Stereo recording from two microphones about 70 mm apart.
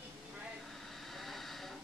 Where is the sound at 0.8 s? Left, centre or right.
Centre.